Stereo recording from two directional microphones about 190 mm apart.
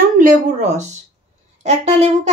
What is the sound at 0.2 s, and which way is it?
Speech, 35° right (ahead or behind).